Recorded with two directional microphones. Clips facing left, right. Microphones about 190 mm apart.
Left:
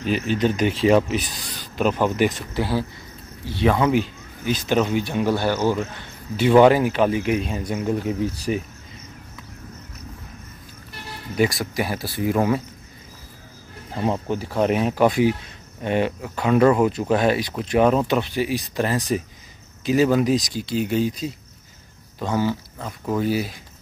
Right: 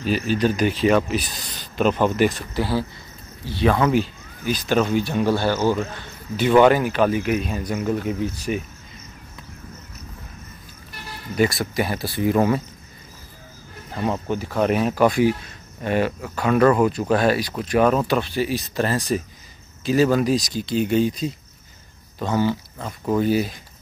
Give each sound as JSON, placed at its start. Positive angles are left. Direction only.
{"t": 0.0, "sound": "speech", "side_deg": 20}
{"t": 1.5, "sound": "speech", "side_deg": 10}
{"t": 11.3, "sound": "speech", "side_deg": 15}
{"t": 14.3, "sound": "speech", "side_deg": 30}
{"t": 23.0, "sound": "speech", "side_deg": 5}